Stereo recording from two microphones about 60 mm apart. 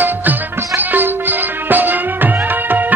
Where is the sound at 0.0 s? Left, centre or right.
Right.